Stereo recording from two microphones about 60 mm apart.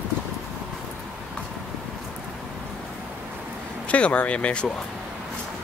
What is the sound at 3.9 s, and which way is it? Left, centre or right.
Speech, left.